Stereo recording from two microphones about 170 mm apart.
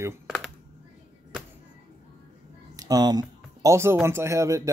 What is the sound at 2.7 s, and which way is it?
Music, 25° right (ahead or behind).